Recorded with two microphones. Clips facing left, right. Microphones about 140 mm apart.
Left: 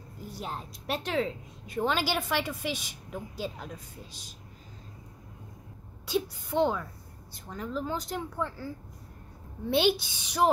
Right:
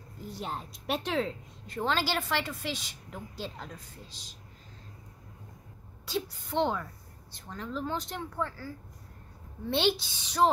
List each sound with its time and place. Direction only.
0.3 s a woman's voice: centre (ahead or behind)
1.8 s a woman's voice: 15° left (ahead or behind)
6.0 s a woman's voice: 10° left (ahead or behind)
8.5 s a woman's voice: 20° left (ahead or behind)